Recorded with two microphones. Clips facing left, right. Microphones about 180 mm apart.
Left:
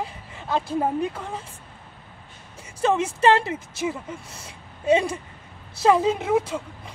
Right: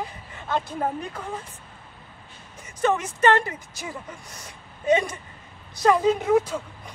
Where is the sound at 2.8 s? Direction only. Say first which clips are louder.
Left 2 dB; 30° left (ahead or behind).